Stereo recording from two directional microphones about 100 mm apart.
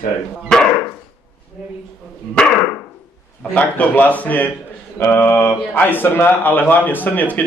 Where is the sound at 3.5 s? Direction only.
15° left (ahead or behind).